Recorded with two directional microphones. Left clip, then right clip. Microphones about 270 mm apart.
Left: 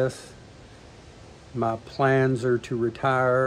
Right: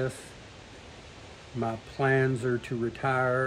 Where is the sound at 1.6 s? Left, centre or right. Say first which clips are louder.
Left 6 dB; centre.